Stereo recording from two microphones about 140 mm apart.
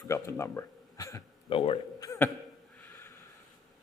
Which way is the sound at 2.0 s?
20° left (ahead or behind).